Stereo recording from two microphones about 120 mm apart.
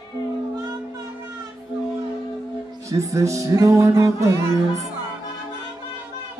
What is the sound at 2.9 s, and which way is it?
Music, 25° right (ahead or behind).